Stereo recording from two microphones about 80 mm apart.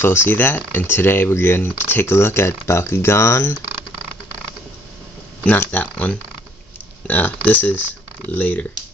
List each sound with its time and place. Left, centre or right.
0.0 s speech: left
5.4 s speech: left